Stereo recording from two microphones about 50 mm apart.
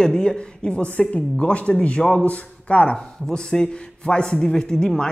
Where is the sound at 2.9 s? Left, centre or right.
Centre.